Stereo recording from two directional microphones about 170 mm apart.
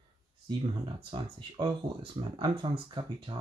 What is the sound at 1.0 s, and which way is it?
Speech, 30° right (ahead or behind).